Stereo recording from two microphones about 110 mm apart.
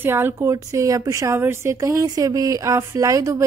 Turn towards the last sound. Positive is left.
turn(degrees=-30)  # may be behind; listen again after turning